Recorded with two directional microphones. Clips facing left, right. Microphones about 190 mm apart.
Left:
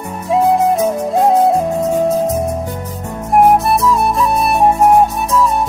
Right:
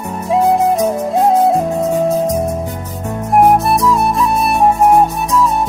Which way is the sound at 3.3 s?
Centre (ahead or behind).